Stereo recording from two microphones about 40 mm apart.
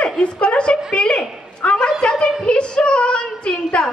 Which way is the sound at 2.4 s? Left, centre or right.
Left.